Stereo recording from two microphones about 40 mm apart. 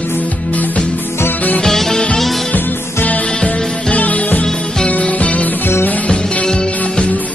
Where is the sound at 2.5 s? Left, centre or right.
Left.